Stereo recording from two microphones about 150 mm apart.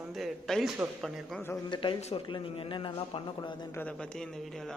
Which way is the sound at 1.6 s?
30° left (ahead or behind).